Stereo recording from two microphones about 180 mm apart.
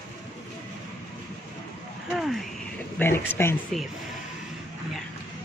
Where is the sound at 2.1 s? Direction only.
Centre (ahead or behind).